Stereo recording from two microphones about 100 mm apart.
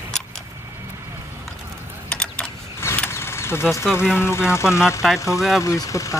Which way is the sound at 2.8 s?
25° left (ahead or behind).